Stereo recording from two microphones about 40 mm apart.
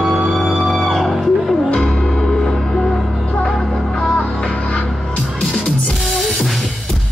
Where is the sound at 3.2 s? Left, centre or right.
Centre.